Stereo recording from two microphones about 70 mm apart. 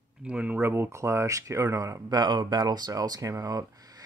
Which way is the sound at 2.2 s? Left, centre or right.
Right.